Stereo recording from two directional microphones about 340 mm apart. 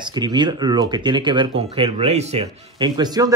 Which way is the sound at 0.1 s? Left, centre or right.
Centre.